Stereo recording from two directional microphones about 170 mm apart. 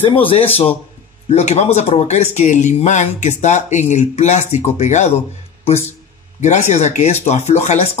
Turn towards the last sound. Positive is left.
turn(degrees=40)  # may be behind; listen again after turning